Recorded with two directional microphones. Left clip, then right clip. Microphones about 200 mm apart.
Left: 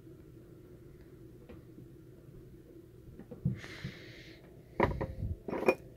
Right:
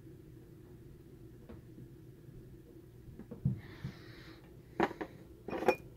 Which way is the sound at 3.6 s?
5° left (ahead or behind).